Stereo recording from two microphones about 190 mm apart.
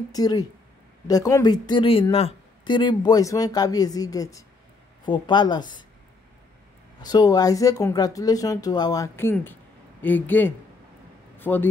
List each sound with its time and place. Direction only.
0.1 s speech: 20° left (ahead or behind)
7.0 s speech: 20° left (ahead or behind)